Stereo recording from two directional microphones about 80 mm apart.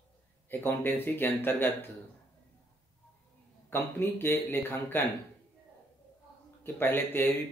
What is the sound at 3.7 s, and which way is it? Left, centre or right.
A man's voice, left.